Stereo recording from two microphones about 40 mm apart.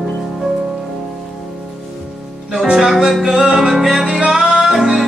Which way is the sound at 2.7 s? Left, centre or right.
Centre.